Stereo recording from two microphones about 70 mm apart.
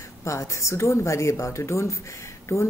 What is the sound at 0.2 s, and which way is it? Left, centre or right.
Speech, left.